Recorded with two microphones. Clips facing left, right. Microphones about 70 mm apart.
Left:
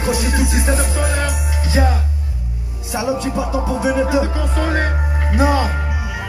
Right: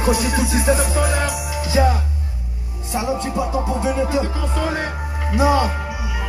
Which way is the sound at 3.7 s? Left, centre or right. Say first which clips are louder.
Left 3 dB; centre.